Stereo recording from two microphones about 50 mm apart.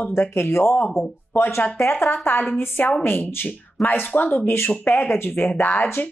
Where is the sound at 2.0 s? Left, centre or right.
Left.